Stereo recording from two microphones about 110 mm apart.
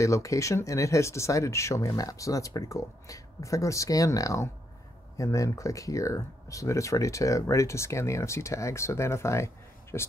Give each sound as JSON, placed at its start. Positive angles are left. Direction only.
{"t": 0.0, "sound": "speech", "side_deg": 30}